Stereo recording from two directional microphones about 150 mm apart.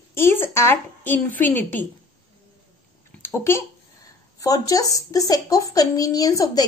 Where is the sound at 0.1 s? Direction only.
15° left (ahead or behind).